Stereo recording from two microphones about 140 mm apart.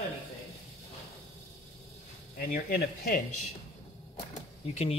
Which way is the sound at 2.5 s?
90° left.